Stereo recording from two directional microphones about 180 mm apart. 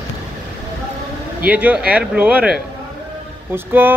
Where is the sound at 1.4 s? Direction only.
10° right (ahead or behind).